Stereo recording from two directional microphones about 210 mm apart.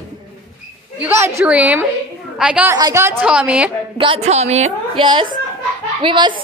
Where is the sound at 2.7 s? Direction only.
15° right (ahead or behind).